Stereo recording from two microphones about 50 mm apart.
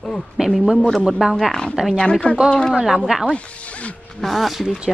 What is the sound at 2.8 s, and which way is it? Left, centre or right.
Speech, centre.